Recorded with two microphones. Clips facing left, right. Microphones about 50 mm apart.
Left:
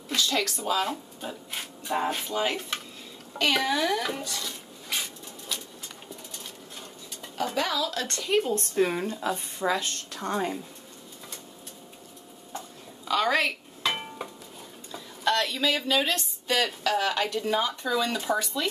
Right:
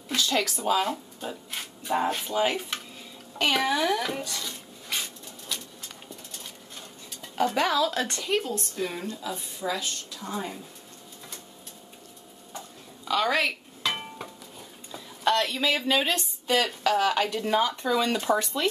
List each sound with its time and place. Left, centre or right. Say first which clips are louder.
0.1 s speech: right 1 dB; centre
3.3 s a sound: even; centre
7.5 s speech: right 2 dB; centre
8.0 s speech: right 3 dB; centre
8.3 s a woman's voice: left 5 dB; centre
8.9 s speech: left 4 dB; centre
9.7 s a woman's voice: left 3 dB; left
10.2 s a woman's voice: left 5 dB; left
12.5 s a sound: left 2 dB; centre
14.9 s a woman's voice: right 1 dB; centre